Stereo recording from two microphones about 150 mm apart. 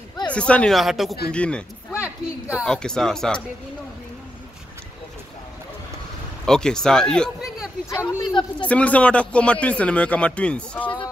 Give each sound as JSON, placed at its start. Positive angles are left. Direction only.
{"t": 0.3, "sound": "a man's voice", "side_deg": 10}
{"t": 6.4, "sound": "speech", "side_deg": 5}
{"t": 7.9, "sound": "a man's voice", "side_deg": 15}
{"t": 8.2, "sound": "speech", "side_deg": 30}
{"t": 8.6, "sound": "a man's voice", "side_deg": 10}